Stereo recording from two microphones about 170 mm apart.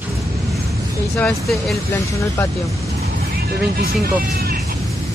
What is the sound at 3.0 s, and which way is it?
Vehicle, 65° right (ahead or behind).